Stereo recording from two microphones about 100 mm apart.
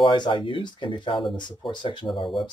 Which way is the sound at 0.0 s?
50° left (ahead or behind).